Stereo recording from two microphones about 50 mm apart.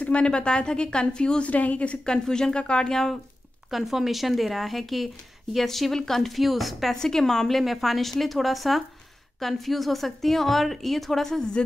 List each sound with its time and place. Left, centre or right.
0.0 s a woman's voice: left
1.5 s a woman's voice: left
2.0 s a woman's voice: centre
3.7 s a woman's voice: centre
7.0 s a woman's voice: centre